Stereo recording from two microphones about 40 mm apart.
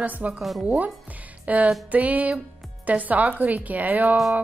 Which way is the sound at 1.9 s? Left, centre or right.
Right.